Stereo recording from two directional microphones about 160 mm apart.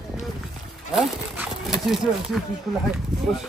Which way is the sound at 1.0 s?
Centre (ahead or behind).